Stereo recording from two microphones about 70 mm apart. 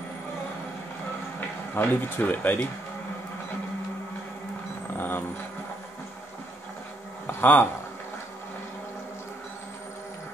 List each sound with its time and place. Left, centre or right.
1.8 s speech: left
4.9 s vehicle: left
7.2 s a sound: left